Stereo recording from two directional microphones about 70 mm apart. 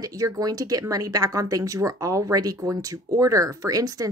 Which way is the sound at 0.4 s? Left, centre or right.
Right.